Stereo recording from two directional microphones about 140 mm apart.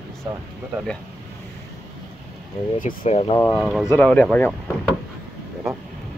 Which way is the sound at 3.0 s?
40° left (ahead or behind).